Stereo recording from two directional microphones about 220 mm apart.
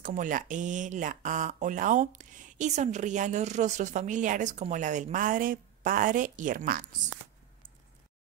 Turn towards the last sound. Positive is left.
turn(degrees=-40)  # may be behind; listen again after turning